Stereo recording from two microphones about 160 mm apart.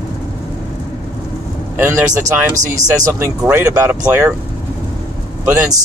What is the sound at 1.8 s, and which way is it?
Speech, 15° right (ahead or behind).